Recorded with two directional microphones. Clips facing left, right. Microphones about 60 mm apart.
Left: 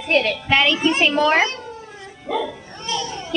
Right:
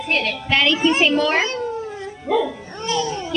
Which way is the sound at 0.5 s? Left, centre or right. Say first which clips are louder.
Right 2 dB; centre.